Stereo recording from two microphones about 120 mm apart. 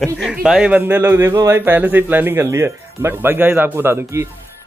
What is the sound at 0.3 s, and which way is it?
Speech, 5° right (ahead or behind).